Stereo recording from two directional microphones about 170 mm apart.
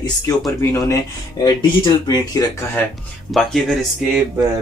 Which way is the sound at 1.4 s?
25° left (ahead or behind).